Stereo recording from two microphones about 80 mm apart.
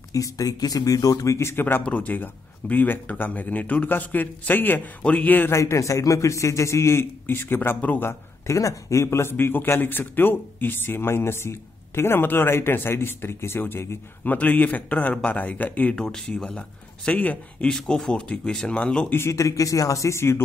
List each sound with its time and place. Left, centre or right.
0.1 s a man's voice: left
5.5 s a man's voice: left
8.5 s a man's voice: left
17.6 s speech: centre
19.1 s a man's voice: left